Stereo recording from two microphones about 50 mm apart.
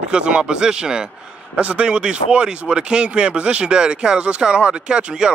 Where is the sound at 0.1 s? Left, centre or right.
Right.